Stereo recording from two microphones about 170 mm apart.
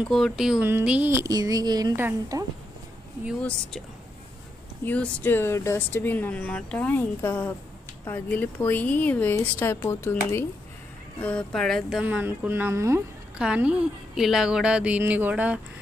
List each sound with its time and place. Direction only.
0.1 s speech: centre (ahead or behind); by 2.4 s 20° right (ahead or behind)
4.8 s speech: 10° left (ahead or behind)
12.0 s a woman's voice: 10° right (ahead or behind)
13.4 s a woman's voice: 5° right (ahead or behind)